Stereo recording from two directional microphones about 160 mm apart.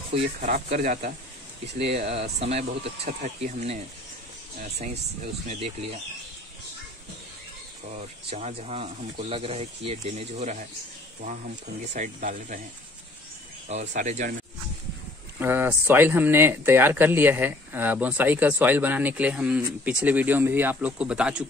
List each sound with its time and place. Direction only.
0.1 s speech: 50° right (ahead or behind)
1.7 s speech: 80° right
2.2 s speech: 40° right (ahead or behind)
5.5 s speech: 40° right (ahead or behind)
8.3 s speech: 40° right (ahead or behind); by 12.6 s 55° right (ahead or behind)
13.7 s speech: 45° right (ahead or behind)
15.3 s speech: 10° right (ahead or behind)